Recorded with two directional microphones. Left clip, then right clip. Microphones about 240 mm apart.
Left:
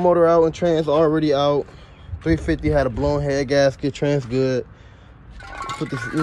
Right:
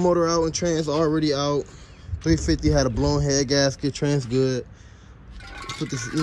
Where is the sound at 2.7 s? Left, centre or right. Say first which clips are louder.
Left 3 dB; right.